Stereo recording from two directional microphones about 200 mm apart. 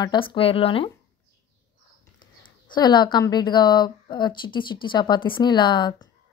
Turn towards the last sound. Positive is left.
turn(degrees=20)  # may be behind; listen again after turning